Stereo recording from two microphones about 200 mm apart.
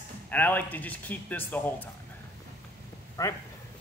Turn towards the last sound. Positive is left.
turn(degrees=15)  # may be behind; listen again after turning